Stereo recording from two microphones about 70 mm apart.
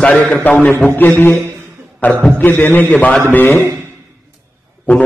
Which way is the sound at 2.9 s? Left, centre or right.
Centre.